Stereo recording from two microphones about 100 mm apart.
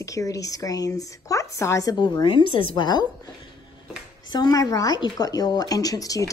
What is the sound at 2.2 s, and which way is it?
Speech, 60° left (ahead or behind).